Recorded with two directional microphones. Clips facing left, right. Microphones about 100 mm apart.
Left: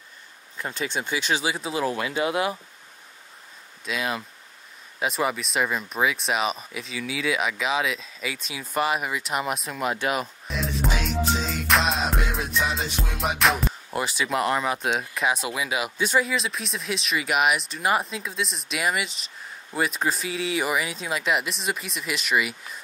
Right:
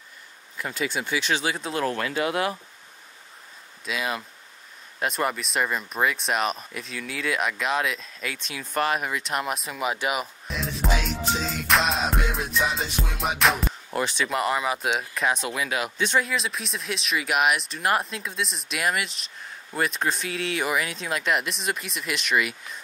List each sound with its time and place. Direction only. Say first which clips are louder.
0.6 s speech: right 1 dB; 25° left (ahead or behind)
1.0 s speech: left 1 dB; 15° left (ahead or behind)
3.8 s speech: left 1 dB; centre (ahead or behind)